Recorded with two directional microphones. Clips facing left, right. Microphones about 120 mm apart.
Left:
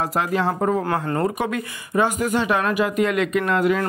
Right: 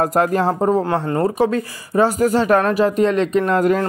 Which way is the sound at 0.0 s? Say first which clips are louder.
Right 5 dB; 45° right (ahead or behind).